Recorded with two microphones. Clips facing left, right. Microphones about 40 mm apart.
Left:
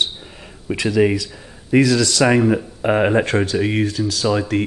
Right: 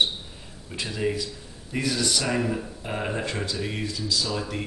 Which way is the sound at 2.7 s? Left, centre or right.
Left.